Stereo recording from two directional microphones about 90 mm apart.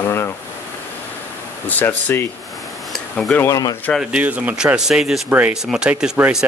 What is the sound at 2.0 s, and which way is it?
Speech, 30° left (ahead or behind).